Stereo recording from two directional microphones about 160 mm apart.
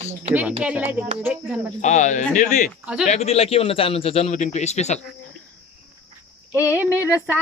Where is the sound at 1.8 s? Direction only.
50° left (ahead or behind).